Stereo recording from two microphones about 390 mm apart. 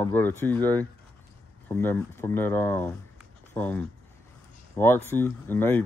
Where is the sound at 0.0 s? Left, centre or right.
Centre.